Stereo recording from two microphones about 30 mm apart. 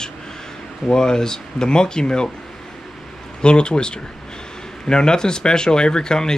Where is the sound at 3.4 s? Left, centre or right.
Left.